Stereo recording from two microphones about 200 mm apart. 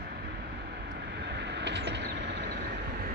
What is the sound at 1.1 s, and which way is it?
Vehicle, 60° right (ahead or behind).